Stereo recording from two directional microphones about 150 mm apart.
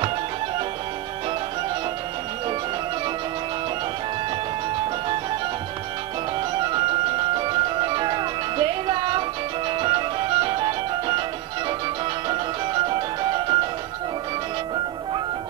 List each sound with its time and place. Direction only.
4.7 s music: 30° right (ahead or behind)
6.5 s music: 30° right (ahead or behind)
12.3 s music: 30° right (ahead or behind)